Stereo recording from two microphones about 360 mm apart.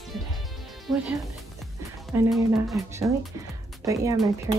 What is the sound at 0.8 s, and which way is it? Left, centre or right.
Speech, centre.